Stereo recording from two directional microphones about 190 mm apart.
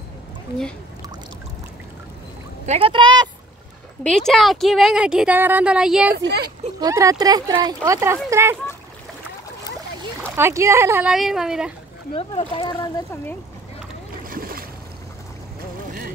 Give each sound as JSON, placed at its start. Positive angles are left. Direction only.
{"t": 2.6, "sound": "speech", "side_deg": -30}
{"t": 4.3, "sound": "speech", "side_deg": 0}
{"t": 6.1, "sound": "speech", "side_deg": -60}
{"t": 6.8, "sound": "speech", "side_deg": -15}
{"t": 10.2, "sound": "speech", "side_deg": -10}
{"t": 12.1, "sound": "speech", "side_deg": 30}
{"t": 14.2, "sound": "boat", "side_deg": -50}